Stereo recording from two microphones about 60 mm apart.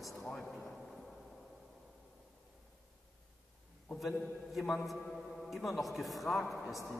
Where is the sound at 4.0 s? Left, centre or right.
Centre.